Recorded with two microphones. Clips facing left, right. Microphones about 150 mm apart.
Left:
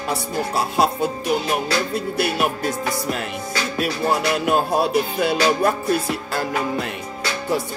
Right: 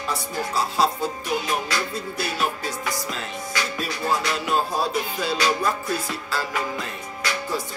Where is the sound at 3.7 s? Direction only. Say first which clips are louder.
Left 6 dB; 65° left (ahead or behind).